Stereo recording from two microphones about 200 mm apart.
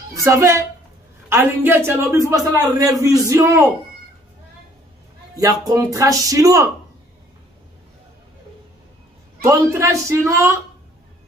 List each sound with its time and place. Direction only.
0.1 s a man's voice: 15° right (ahead or behind)
5.3 s a man's voice: 20° right (ahead or behind)
9.4 s a man's voice: 15° right (ahead or behind)